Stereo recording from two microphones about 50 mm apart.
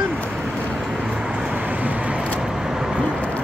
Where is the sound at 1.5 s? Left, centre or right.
Right.